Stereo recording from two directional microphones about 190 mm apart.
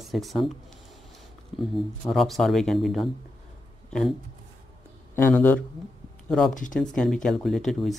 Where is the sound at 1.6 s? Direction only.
Centre (ahead or behind).